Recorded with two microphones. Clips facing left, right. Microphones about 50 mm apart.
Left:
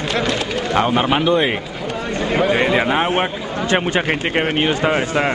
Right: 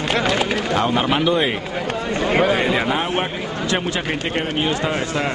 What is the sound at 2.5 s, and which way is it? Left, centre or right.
Speech, centre.